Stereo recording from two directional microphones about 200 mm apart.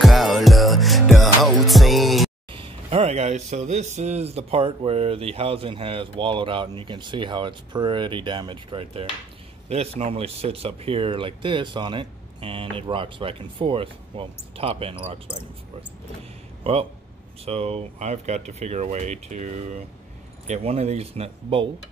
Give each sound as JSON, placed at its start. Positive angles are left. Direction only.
{"t": 0.0, "sound": "music", "side_deg": 0}
{"t": 2.5, "sound": "speech", "side_deg": -30}
{"t": 17.5, "sound": "speech", "side_deg": -30}